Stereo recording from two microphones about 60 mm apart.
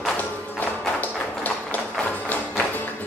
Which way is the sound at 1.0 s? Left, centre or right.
Left.